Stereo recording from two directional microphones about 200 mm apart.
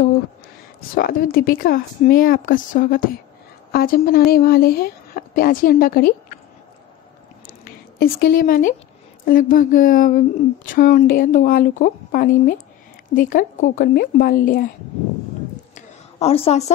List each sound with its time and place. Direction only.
0.9 s speech: 45° left (ahead or behind)
7.6 s a woman's voice: 50° left (ahead or behind)
15.7 s a sound: 30° left (ahead or behind)